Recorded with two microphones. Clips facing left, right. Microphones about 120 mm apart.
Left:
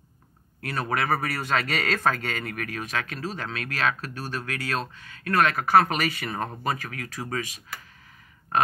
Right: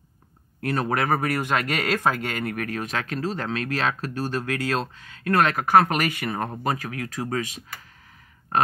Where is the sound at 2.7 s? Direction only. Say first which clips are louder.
Right 3 dB; 30° right (ahead or behind).